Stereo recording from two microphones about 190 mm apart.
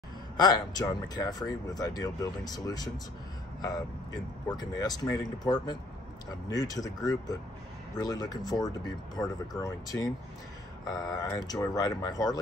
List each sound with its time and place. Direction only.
0.4 s speech: 20° left (ahead or behind)
4.5 s speech: 20° left (ahead or behind)